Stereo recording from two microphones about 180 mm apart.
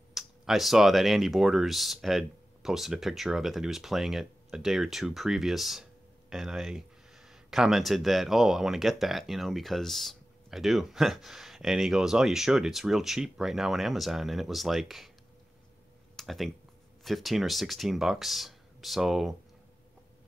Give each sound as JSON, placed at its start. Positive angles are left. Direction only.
{"t": 0.1, "sound": "speech", "side_deg": 0}
{"t": 16.2, "sound": "speech", "side_deg": 0}